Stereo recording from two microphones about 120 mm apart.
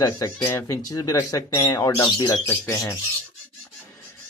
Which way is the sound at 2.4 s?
20° left (ahead or behind).